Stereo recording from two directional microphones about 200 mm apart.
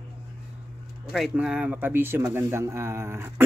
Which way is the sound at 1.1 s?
5° right (ahead or behind).